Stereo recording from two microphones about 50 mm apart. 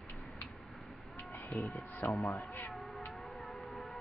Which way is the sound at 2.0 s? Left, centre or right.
Left.